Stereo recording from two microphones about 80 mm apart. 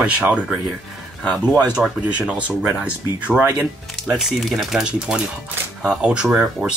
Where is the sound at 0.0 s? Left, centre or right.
Centre.